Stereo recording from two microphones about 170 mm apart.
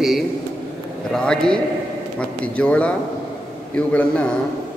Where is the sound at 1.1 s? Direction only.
5° left (ahead or behind).